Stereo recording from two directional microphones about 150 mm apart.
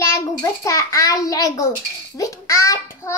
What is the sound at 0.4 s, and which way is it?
A child's voice, 20° left (ahead or behind).